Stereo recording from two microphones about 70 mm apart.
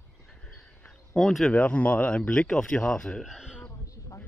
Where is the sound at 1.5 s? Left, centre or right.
Centre.